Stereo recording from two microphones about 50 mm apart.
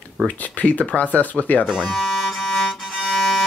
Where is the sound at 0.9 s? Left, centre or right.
Left.